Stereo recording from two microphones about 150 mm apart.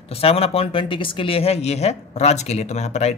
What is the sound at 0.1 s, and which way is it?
Speech, 40° left (ahead or behind).